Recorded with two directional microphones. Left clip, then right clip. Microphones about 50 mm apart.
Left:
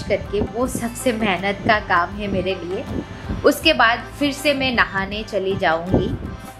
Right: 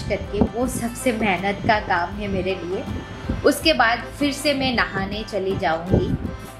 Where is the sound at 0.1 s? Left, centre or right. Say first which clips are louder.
Left 2 dB; left.